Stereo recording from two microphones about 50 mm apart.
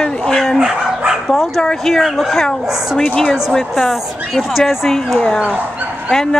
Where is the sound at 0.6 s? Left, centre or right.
Centre.